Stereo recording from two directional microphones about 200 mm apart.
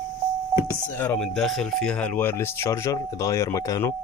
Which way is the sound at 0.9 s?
5° left (ahead or behind).